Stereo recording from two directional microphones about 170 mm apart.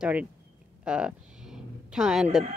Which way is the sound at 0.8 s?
5° right (ahead or behind).